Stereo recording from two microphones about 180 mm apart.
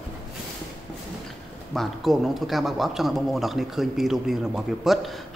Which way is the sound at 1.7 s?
Centre (ahead or behind).